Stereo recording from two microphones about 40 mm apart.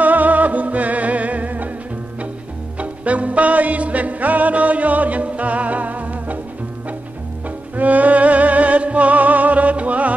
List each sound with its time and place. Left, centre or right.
0.0 s music: right
2.8 s music: right
7.4 s music: right